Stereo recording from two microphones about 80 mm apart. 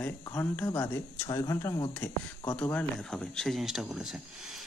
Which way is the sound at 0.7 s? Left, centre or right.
Left.